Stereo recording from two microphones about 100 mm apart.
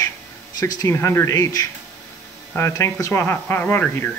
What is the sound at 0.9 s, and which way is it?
Speech, 25° left (ahead or behind).